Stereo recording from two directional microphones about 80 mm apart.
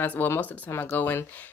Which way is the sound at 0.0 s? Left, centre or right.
Centre.